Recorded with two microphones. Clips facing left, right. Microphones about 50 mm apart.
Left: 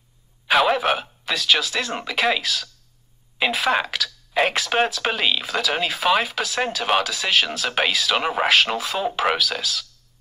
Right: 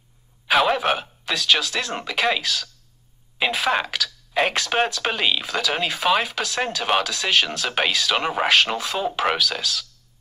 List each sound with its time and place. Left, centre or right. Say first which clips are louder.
0.5 s speech: left 1 dB; centre